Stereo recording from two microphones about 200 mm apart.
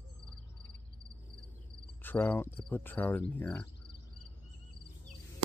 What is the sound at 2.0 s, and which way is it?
Cricket, 10° left (ahead or behind).